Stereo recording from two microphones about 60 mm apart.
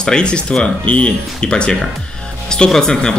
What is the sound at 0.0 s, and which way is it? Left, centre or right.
Speech, centre.